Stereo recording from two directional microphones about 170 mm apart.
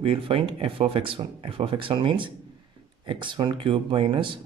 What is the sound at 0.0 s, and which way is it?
Speech, 30° right (ahead or behind).